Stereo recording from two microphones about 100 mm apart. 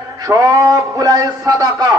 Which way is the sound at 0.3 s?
35° right (ahead or behind).